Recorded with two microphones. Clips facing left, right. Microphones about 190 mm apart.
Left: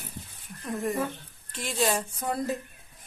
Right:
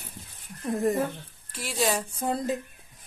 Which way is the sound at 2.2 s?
20° right (ahead or behind).